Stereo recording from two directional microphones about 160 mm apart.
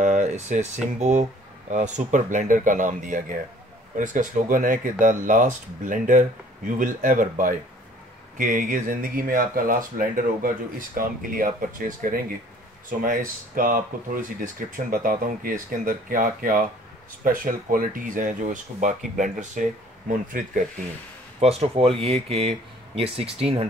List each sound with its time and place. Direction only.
0.0 s speech: 50° right (ahead or behind)
21.4 s speech: 40° right (ahead or behind)